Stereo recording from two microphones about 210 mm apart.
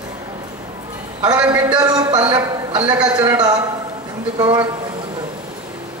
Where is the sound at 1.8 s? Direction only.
20° right (ahead or behind).